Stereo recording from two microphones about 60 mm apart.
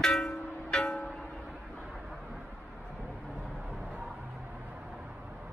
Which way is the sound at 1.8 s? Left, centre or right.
Centre.